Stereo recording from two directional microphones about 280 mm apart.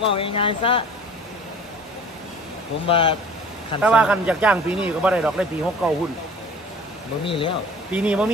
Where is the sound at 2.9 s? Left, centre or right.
Centre.